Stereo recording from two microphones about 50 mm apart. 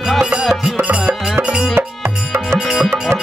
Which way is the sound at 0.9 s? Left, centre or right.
Right.